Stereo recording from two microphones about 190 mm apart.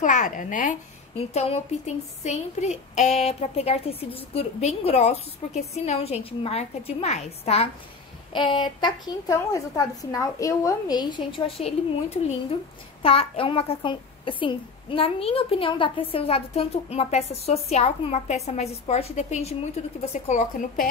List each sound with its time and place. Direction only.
0.0 s a child's voice: 40° left (ahead or behind)